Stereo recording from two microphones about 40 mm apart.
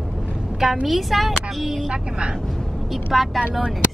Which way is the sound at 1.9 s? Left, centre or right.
Right.